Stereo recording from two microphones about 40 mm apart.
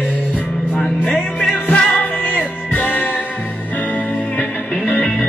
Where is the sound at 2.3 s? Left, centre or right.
Left.